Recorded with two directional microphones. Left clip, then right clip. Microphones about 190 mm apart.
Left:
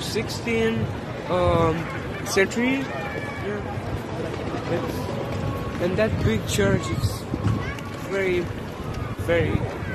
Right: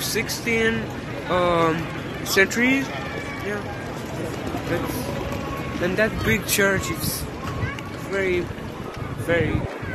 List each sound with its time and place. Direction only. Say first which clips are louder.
0.1 s speech: right 2 dB; centre (ahead or behind)
5.9 s speech: right 4 dB; 5° right (ahead or behind)
8.1 s speech: right 1 dB; centre (ahead or behind)